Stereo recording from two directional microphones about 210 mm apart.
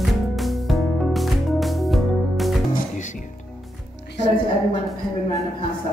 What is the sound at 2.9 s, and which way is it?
Music, 35° left (ahead or behind).